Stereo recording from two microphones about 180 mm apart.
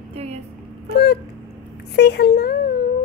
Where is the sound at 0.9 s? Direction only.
65° left (ahead or behind).